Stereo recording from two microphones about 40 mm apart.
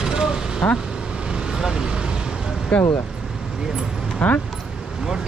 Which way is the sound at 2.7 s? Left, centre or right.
Left.